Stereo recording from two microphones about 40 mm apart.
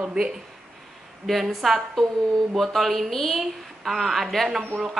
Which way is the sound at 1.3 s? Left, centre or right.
Centre.